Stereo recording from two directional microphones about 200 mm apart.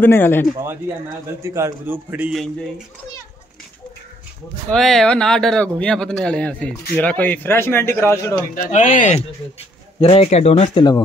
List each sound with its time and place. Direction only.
0.0 s speech: 10° left (ahead or behind)
1.4 s a man's voice: 15° right (ahead or behind)
4.6 s speech: centre (ahead or behind)
8.5 s speech: 35° left (ahead or behind)